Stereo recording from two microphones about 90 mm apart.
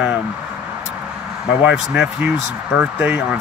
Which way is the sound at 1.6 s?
10° right (ahead or behind).